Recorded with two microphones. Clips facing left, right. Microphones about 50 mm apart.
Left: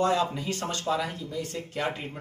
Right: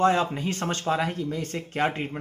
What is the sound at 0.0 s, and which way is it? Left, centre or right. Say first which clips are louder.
Speech: right 3 dB; right.